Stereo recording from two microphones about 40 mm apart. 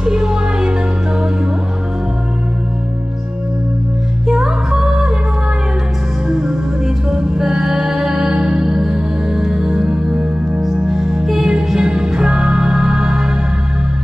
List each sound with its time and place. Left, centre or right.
0.0 s music: centre
4.3 s music: centre
6.2 s music: right
10.9 s music: centre